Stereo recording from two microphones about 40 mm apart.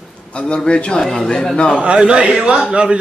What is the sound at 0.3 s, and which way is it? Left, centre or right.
Speech, left.